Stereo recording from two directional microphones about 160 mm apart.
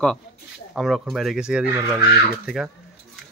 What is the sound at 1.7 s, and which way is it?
Speech, 15° right (ahead or behind).